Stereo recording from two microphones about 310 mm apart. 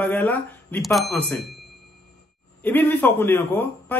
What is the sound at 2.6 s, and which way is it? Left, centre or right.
A man's voice, centre.